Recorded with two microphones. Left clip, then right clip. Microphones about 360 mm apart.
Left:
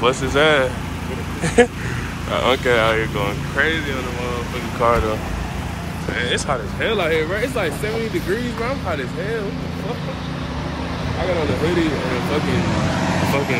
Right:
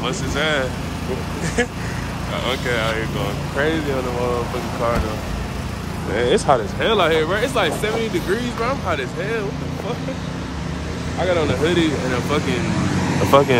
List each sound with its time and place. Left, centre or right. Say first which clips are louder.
0.0 s speech: left 6 dB; centre
4.8 s speech: left 5 dB; centre
6.2 s speech: right 6 dB; right
6.8 s speech: right 2 dB; centre
11.6 s speech: right 1 dB; centre